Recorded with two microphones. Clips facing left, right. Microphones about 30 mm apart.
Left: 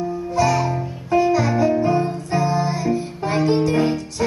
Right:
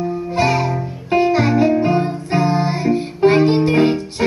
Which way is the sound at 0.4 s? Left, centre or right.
Right.